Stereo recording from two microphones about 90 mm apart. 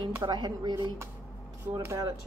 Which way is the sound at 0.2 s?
55° right (ahead or behind).